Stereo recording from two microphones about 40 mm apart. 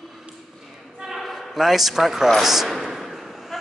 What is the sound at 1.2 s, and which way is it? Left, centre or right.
A man's voice, centre.